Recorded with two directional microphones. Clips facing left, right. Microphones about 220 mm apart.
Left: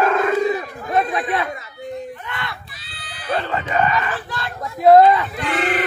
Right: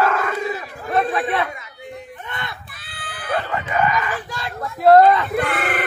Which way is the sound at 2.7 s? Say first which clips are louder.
Right 3 dB; 55° right (ahead or behind).